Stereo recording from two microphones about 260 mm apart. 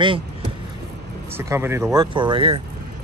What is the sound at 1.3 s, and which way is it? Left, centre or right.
Speech, centre.